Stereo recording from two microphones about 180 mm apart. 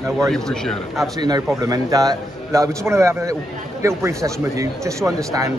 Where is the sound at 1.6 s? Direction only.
20° right (ahead or behind).